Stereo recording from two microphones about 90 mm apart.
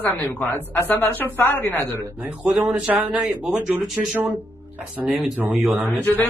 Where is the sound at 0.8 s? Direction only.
20° left (ahead or behind).